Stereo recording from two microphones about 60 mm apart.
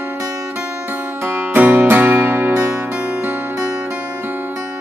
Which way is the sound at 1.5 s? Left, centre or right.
Right.